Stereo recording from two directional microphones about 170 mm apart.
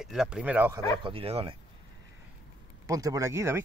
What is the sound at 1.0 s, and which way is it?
Speech, 35° right (ahead or behind).